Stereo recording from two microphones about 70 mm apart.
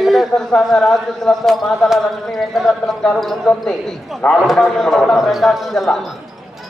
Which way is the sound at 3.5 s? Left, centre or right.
Centre.